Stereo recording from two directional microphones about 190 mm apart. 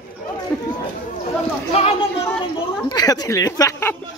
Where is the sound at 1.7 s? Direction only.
30° left (ahead or behind).